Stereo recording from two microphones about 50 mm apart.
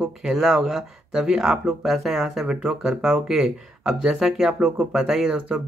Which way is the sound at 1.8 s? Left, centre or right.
Centre.